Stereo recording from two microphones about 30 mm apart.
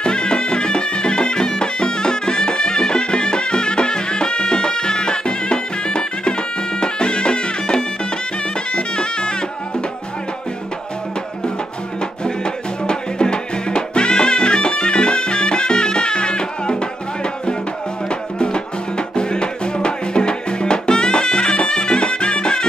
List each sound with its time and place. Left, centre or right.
0.0 s music: left
12.4 s music: left
18.4 s music: left